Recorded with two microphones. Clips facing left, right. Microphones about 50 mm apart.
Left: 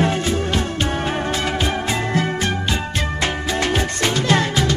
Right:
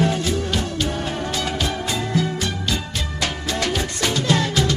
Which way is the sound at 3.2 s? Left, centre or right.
Left.